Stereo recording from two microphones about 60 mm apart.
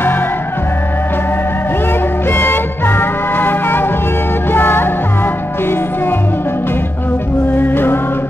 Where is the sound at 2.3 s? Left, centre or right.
Left.